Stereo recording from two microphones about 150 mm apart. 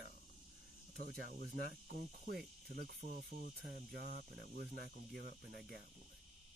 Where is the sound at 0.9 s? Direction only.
90° right; by 2.4 s 75° right (ahead or behind).